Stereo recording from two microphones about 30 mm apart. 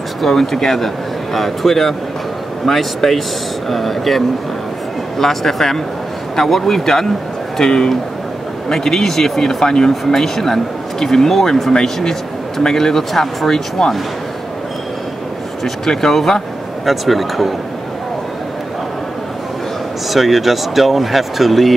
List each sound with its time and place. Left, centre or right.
0.2 s speech: centre
5.2 s a man's voice: centre
11.7 s speech: centre
16.1 s speech: centre
16.8 s speech: centre
20.1 s speech: centre